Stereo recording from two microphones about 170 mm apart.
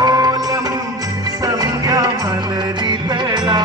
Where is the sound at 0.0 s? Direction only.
20° right (ahead or behind).